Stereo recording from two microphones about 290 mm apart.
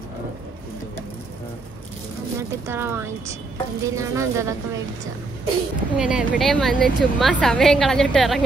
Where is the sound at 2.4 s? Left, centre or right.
Centre.